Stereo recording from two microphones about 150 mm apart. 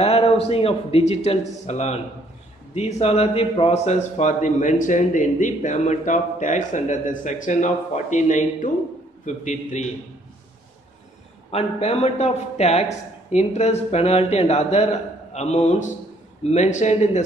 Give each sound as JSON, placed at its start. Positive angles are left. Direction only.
{"t": 0.0, "sound": "a man's voice", "side_deg": 45}
{"t": 11.5, "sound": "speech", "side_deg": 45}